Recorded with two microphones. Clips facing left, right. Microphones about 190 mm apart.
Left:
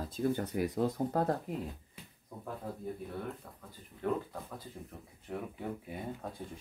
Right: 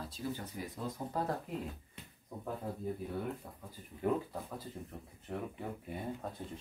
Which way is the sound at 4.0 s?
10° right (ahead or behind).